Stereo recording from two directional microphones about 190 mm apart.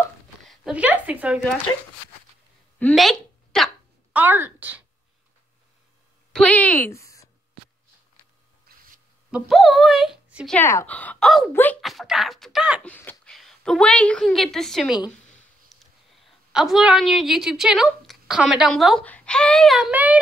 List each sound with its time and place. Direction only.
0.5 s speech: 5° right (ahead or behind)
2.8 s a sound: centre (ahead or behind)
6.3 s speech: 5° left (ahead or behind)
8.6 s a sound: 45° right (ahead or behind)
9.3 s speech: centre (ahead or behind)
10.6 s speech: 15° left (ahead or behind); by 12.8 s 5° right (ahead or behind)
12.8 s a woman's voice: 10° left (ahead or behind); by 20.2 s 10° right (ahead or behind)